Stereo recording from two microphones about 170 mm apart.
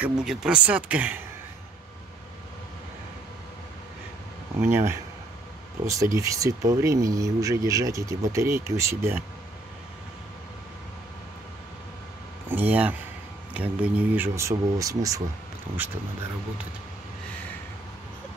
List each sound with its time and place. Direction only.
0.0 s speech: 5° right (ahead or behind)
4.6 s speech: 15° right (ahead or behind)
6.1 s speech: 20° right (ahead or behind)
12.4 s a sound: 10° right (ahead or behind)
13.5 s speech: 10° right (ahead or behind)